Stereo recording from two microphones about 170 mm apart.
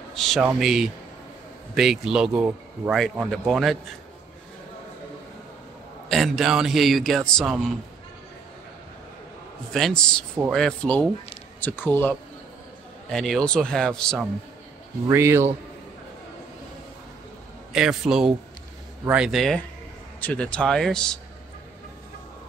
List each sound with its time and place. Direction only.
0.1 s a sound: centre (ahead or behind)
0.6 s a man's voice: 5° right (ahead or behind)
6.0 s a man's voice: centre (ahead or behind)
9.7 s a man's voice: 5° left (ahead or behind)
15.0 s speech: 15° right (ahead or behind)
17.7 s a man's voice: 5° right (ahead or behind)